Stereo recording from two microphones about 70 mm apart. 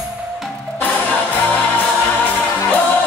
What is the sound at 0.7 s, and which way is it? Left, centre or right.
Music, left.